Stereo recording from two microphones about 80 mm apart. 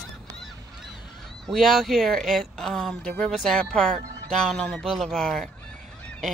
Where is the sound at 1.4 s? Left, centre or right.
Centre.